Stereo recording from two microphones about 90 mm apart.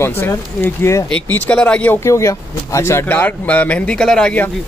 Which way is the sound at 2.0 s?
35° left (ahead or behind).